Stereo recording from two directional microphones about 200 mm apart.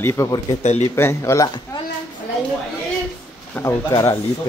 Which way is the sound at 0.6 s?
35° left (ahead or behind).